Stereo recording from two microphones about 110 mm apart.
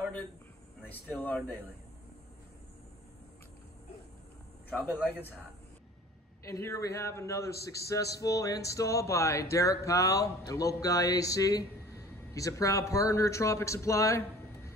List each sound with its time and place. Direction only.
0.8 s speech: 15° left (ahead or behind)
4.6 s speech: 15° left (ahead or behind)
6.4 s speech: 25° left (ahead or behind)